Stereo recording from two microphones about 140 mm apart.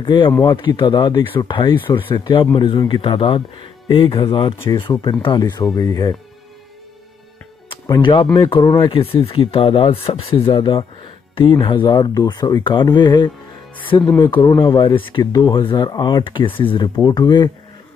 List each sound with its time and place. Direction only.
0.0 s speech: 35° left (ahead or behind)
7.7 s speech: 35° left (ahead or behind)